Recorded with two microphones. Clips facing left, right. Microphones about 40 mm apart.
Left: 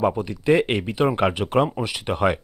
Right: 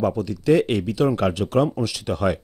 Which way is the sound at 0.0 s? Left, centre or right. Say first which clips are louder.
Even; left.